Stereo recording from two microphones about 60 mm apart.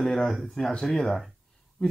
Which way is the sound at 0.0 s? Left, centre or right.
Centre.